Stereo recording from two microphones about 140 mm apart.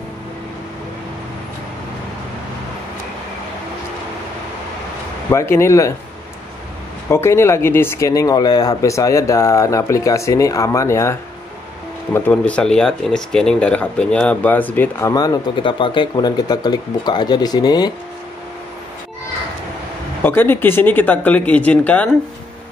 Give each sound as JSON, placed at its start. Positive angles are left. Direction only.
{"t": 5.3, "sound": "speech", "side_deg": 20}
{"t": 7.1, "sound": "speech", "side_deg": 20}
{"t": 12.1, "sound": "speech", "side_deg": 10}
{"t": 20.2, "sound": "speech", "side_deg": 15}